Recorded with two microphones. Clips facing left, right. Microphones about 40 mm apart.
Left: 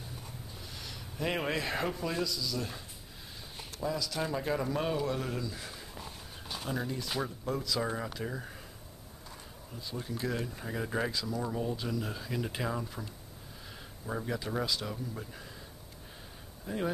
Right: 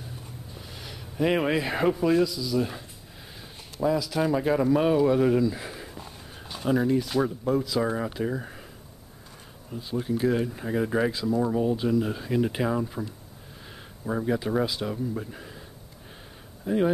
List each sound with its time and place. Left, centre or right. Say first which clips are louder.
0.6 s speech: right 4 dB; centre
4.0 s speech: right 9 dB; centre
6.5 s a sound: right 9 dB; centre
7.2 s speech: right 9 dB; centre
9.7 s speech: right 11 dB; right
14.0 s speech: right 9 dB; centre
16.6 s speech: right 10 dB; right